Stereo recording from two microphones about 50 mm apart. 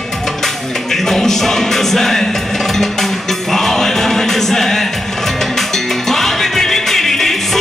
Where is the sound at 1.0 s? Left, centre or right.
Centre.